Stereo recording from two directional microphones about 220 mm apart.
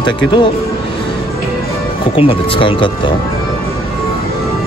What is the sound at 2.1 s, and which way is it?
Speech, 25° left (ahead or behind).